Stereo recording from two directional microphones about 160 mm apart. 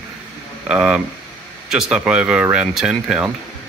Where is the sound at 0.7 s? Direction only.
5° right (ahead or behind).